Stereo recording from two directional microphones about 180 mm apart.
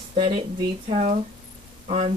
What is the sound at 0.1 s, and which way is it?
Speech, 30° right (ahead or behind).